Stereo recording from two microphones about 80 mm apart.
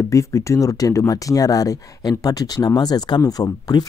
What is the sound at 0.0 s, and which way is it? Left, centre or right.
Speech, left.